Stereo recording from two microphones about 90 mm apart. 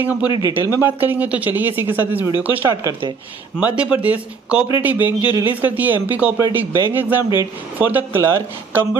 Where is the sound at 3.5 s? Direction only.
15° right (ahead or behind).